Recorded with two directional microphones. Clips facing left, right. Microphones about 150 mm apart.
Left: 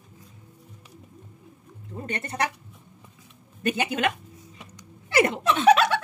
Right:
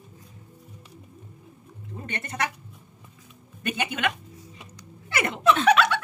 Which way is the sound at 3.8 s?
35° left (ahead or behind).